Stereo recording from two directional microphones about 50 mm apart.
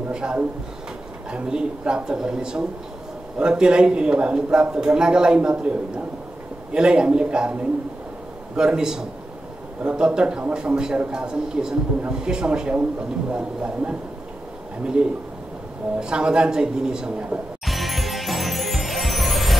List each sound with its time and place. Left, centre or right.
0.1 s a man's voice: centre
15.0 s a man's voice: right
17.6 s music: centre